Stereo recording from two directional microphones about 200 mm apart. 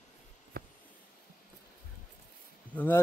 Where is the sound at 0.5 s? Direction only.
50° right (ahead or behind).